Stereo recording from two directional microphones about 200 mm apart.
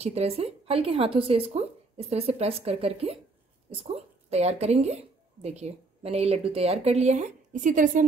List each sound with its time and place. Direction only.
0.0 s a woman's voice: 30° right (ahead or behind)